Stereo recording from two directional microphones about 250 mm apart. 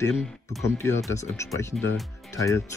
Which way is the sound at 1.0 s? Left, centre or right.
Centre.